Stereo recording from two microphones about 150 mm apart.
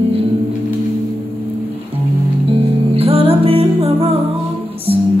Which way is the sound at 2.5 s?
40° right (ahead or behind).